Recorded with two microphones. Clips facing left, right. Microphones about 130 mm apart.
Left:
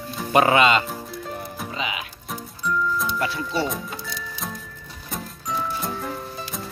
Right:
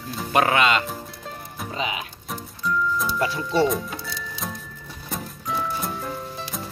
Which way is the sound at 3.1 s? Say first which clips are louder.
Right 1 dB; 25° right (ahead or behind).